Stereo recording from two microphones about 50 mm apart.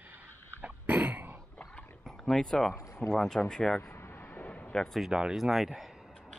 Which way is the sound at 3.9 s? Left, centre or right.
Left.